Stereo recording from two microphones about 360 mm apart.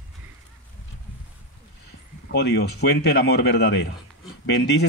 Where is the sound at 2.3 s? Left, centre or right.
Left.